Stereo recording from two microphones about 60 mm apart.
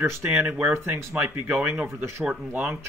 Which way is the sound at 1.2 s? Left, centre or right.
Right.